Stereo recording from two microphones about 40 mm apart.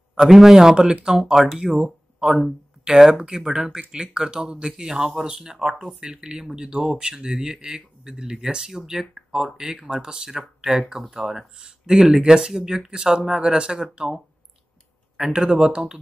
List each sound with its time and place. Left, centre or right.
0.3 s speech: centre
1.2 s speech: centre
15.1 s speech: centre